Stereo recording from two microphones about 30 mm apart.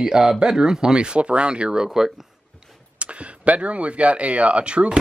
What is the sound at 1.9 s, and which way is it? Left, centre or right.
Speech, centre.